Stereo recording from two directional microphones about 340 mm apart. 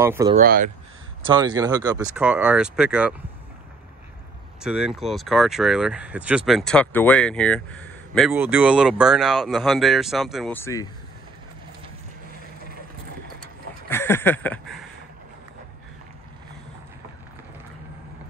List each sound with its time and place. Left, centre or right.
0.0 s speech: centre
0.4 s speech: right
1.2 s speech: centre
4.6 s speech: centre
13.8 s a sound: centre